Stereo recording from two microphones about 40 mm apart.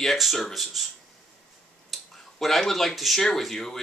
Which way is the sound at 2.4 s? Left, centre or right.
Centre.